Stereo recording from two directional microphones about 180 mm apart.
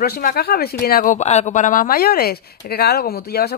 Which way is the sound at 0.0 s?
60° left (ahead or behind).